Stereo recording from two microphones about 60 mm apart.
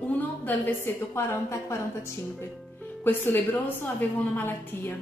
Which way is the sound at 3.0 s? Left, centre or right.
Left.